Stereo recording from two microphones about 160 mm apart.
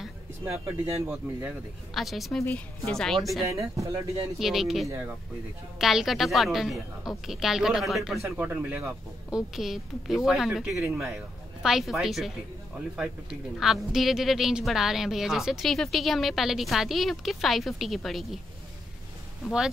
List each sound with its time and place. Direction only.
0.5 s speech: 15° right (ahead or behind)
2.0 s a woman's voice: centre (ahead or behind)
2.4 s a woman's voice: 10° left (ahead or behind)
3.4 s speech: 20° right (ahead or behind)
4.4 s a woman's voice: centre (ahead or behind)
4.8 s speech: 15° right (ahead or behind)
5.8 s a woman's voice: centre (ahead or behind)
8.2 s a woman's voice: 15° right (ahead or behind)